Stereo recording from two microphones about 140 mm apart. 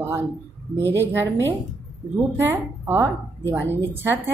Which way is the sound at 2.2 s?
15° right (ahead or behind).